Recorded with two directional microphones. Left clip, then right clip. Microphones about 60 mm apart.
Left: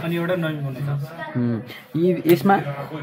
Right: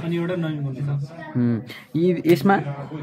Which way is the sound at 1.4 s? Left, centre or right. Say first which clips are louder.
Right 1 dB; right.